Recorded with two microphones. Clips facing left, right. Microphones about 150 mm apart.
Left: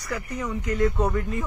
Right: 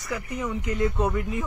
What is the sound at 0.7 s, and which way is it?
Speech, 20° right (ahead or behind).